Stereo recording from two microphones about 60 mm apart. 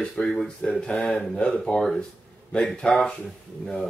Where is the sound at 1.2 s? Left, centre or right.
Centre.